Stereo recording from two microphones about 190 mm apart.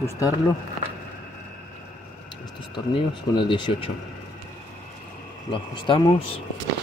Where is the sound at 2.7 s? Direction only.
25° left (ahead or behind).